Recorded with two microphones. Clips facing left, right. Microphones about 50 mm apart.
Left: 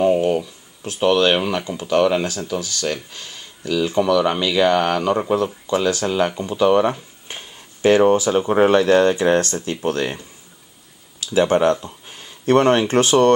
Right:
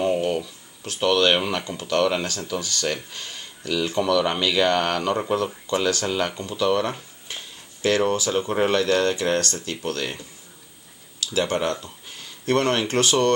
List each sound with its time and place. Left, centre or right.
0.0 s a sound: centre
1.7 s speech: centre
7.2 s speech: left
11.3 s speech: centre